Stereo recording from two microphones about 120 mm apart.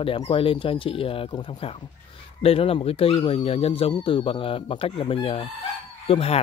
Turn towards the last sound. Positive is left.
turn(degrees=55)  # may be behind; listen again after turning